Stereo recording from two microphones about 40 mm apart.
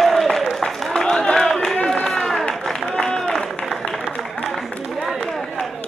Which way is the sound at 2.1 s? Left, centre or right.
Centre.